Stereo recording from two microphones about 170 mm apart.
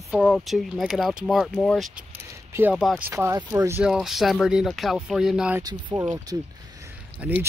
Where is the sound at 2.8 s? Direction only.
Centre (ahead or behind).